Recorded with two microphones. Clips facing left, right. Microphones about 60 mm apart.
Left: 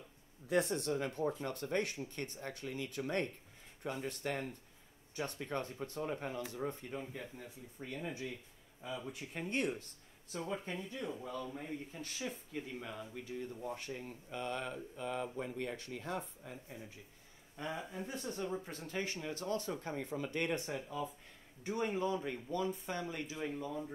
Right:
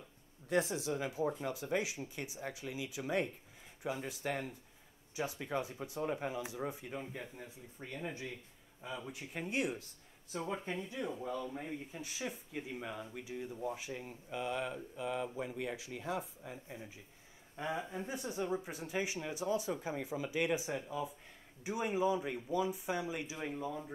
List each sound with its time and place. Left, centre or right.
0.5 s speech: centre
16.6 s speech: centre